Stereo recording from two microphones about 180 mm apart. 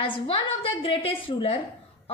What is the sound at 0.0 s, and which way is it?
A woman's voice, 30° left (ahead or behind).